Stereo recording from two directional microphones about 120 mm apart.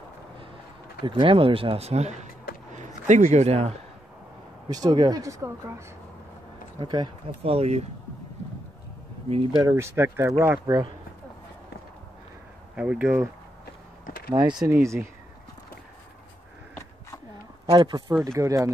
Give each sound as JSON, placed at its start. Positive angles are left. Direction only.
{"t": 1.0, "sound": "speech", "side_deg": -40}
{"t": 2.7, "sound": "a man's voice", "side_deg": -85}
{"t": 4.6, "sound": "speech", "side_deg": -30}
{"t": 6.8, "sound": "speech", "side_deg": -40}
{"t": 7.4, "sound": "speech", "side_deg": -60}
{"t": 9.6, "sound": "speech", "side_deg": -20}
{"t": 10.7, "sound": "speech", "side_deg": -30}
{"t": 12.7, "sound": "speech", "side_deg": -10}
{"t": 14.3, "sound": "speech", "side_deg": -35}
{"t": 14.7, "sound": "speech", "side_deg": -25}
{"t": 17.6, "sound": "speech", "side_deg": -40}
{"t": 18.2, "sound": "speech", "side_deg": -25}